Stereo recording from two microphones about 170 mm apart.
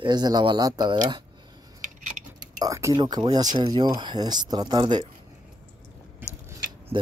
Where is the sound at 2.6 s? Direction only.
20° right (ahead or behind).